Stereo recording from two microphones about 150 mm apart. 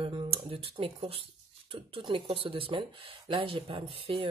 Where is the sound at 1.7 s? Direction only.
35° right (ahead or behind).